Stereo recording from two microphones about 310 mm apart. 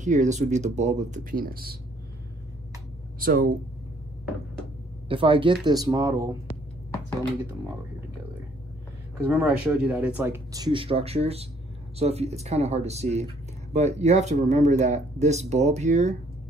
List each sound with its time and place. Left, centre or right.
0.0 s speech: right
3.2 s speech: right
5.0 s speech: centre
9.2 s speech: centre; by 16.2 s right